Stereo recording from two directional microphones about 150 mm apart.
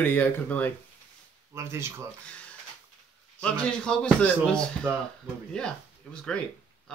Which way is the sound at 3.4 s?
5° left (ahead or behind).